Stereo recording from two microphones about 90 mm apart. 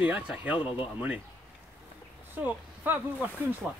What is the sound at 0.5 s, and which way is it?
Speech, 70° left (ahead or behind).